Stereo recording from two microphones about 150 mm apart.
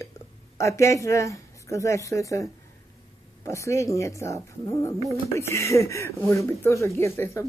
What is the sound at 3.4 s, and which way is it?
Speech, 20° left (ahead or behind).